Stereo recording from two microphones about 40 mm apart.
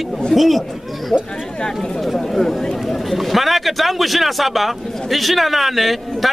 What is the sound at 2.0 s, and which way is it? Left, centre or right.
A man's voice, centre.